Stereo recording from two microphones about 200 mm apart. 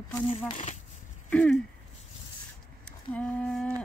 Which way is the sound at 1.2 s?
5° left (ahead or behind).